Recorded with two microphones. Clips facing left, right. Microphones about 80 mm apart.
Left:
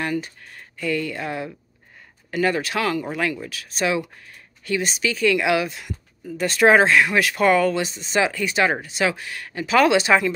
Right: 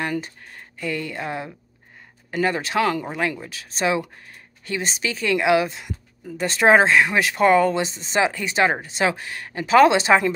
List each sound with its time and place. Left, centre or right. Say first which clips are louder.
0.1 s speech: left 1 dB; right